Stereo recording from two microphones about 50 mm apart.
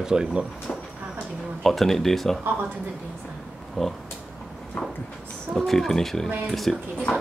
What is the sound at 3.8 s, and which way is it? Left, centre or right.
Speech, centre.